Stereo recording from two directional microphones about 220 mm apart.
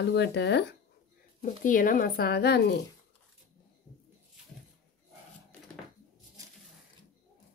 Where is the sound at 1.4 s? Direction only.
35° left (ahead or behind).